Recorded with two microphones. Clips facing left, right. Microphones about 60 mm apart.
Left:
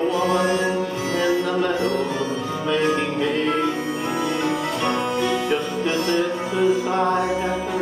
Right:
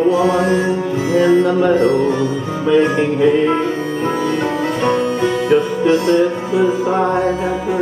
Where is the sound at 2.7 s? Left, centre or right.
Centre.